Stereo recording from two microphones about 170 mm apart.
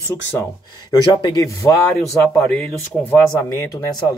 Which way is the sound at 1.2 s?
25° left (ahead or behind).